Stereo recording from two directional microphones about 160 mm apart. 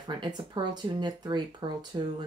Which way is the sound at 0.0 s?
25° right (ahead or behind).